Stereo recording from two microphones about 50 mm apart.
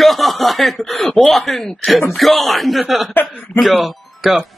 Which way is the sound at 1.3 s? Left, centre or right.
Centre.